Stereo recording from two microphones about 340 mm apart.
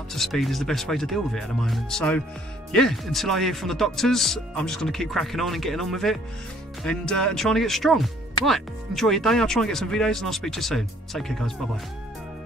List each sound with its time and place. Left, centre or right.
0.1 s speech: centre